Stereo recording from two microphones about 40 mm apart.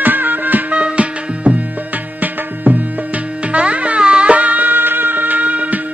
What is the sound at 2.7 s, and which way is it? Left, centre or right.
Music, right.